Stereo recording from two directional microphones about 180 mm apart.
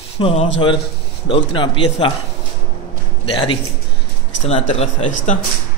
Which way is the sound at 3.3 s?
30° left (ahead or behind).